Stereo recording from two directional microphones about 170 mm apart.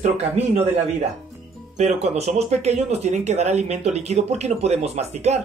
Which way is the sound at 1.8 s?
40° right (ahead or behind).